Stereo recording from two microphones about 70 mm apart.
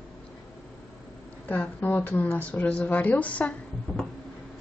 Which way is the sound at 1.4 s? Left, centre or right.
Left.